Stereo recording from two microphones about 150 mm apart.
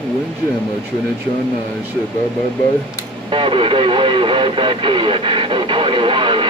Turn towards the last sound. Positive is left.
turn(degrees=-35)  # may be behind; listen again after turning